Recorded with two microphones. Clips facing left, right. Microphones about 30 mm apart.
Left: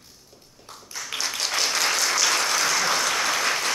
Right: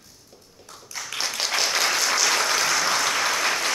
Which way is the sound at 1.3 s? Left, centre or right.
Centre.